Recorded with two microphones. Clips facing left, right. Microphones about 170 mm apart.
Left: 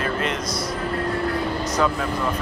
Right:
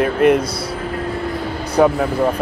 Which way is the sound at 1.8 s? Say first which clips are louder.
Right 10 dB; 55° right (ahead or behind).